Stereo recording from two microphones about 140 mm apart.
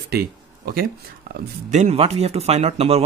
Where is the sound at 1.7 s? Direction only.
50° right (ahead or behind).